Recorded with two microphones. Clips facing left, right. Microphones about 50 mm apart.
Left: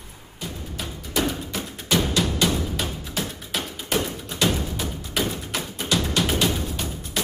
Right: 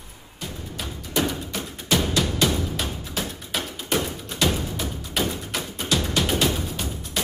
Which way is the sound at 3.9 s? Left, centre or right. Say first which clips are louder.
Even; centre.